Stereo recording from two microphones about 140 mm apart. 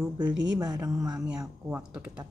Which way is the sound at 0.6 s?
25° right (ahead or behind).